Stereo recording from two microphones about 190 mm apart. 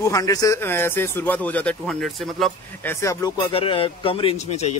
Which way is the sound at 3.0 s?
20° left (ahead or behind).